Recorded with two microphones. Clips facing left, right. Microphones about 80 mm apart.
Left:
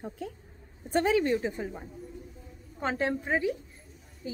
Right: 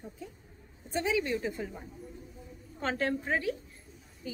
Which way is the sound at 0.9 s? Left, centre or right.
Left.